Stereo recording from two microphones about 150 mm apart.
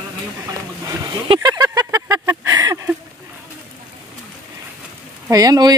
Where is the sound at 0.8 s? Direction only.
25° right (ahead or behind).